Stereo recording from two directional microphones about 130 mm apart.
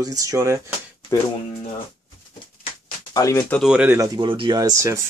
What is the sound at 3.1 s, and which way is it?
Speech, 25° left (ahead or behind).